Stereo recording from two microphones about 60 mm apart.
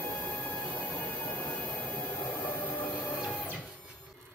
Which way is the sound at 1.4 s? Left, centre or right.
Centre.